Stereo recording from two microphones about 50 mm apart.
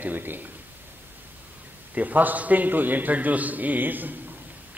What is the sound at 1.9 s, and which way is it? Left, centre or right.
A man's voice, right.